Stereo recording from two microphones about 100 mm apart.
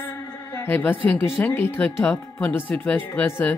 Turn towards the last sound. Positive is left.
turn(degrees=20)  # may be behind; listen again after turning